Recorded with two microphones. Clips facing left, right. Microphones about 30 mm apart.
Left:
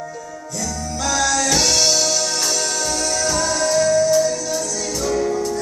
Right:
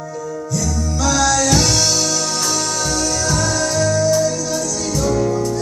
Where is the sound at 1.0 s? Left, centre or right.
Right.